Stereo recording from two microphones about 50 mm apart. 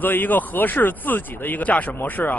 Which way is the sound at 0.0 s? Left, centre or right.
Left.